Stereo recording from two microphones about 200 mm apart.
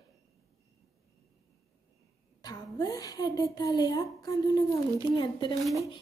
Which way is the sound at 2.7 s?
20° left (ahead or behind).